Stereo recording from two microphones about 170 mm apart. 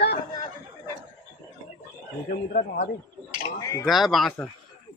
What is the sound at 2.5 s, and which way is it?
Speech, 50° left (ahead or behind).